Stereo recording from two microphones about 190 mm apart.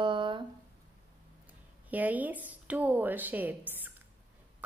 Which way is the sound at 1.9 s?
10° right (ahead or behind).